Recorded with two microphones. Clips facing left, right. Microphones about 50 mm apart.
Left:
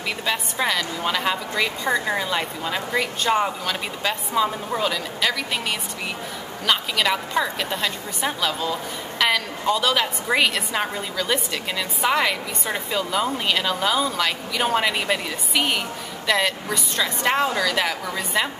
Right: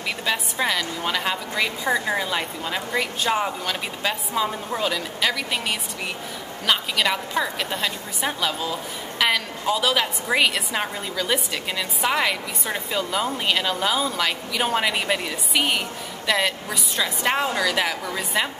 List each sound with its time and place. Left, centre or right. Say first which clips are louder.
0.2 s a woman's voice: even; centre